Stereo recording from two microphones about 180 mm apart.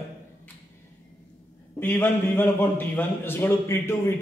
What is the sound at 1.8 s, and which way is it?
A man's voice, 10° left (ahead or behind).